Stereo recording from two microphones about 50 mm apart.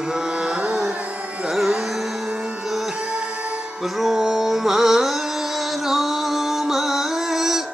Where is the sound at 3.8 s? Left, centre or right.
Centre.